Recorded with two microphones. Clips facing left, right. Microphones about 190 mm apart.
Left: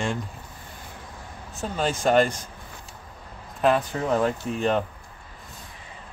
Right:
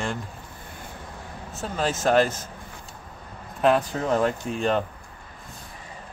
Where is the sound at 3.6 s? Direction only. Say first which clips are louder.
Right 1 dB; centre (ahead or behind).